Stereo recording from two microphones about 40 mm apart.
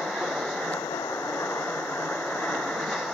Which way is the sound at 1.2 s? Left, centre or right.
Left.